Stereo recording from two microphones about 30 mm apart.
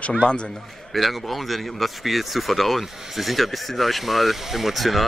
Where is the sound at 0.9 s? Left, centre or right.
Centre.